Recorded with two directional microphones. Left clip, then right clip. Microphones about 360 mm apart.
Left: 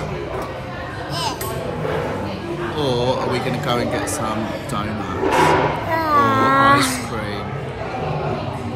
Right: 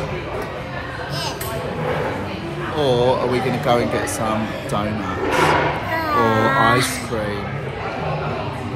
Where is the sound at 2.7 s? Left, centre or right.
Centre.